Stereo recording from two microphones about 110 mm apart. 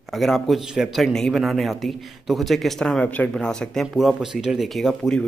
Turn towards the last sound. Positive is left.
turn(degrees=5)  # may be behind; listen again after turning